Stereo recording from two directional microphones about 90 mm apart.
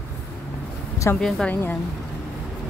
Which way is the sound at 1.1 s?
35° left (ahead or behind).